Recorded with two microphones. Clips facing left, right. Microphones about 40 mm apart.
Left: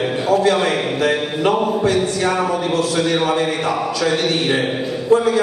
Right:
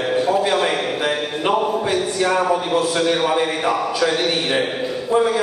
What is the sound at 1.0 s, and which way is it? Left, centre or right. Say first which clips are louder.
A man's voice: left 3 dB; centre.